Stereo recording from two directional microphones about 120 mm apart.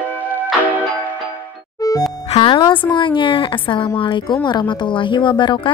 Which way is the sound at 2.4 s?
40° left (ahead or behind).